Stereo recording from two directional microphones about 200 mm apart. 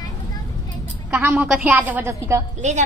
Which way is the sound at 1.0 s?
10° right (ahead or behind).